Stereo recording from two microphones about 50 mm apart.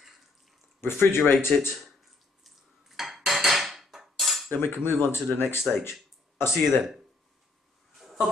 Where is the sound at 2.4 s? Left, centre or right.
Centre.